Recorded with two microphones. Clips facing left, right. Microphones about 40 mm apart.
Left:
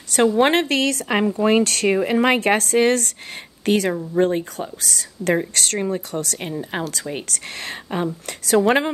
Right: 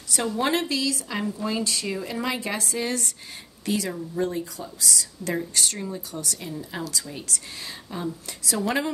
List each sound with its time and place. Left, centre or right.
0.4 s speech: left